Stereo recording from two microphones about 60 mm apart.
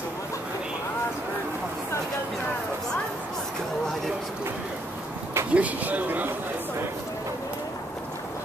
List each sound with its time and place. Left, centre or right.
5.5 s speech: right